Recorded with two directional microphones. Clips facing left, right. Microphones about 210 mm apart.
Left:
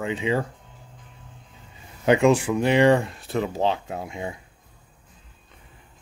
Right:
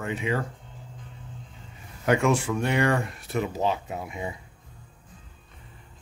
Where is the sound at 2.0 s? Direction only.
20° left (ahead or behind).